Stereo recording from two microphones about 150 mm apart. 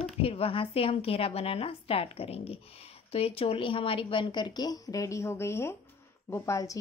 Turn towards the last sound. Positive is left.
turn(degrees=20)  # may be behind; listen again after turning